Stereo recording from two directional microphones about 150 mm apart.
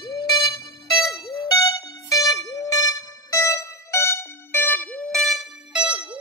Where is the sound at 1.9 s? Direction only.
25° left (ahead or behind).